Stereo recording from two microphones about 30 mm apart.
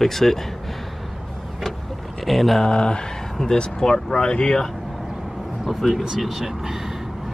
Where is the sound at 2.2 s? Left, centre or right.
Centre.